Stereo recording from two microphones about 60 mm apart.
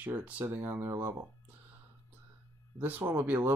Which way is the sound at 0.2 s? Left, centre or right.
Right.